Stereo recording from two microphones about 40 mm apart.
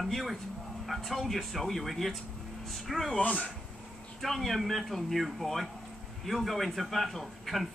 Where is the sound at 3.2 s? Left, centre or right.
Left.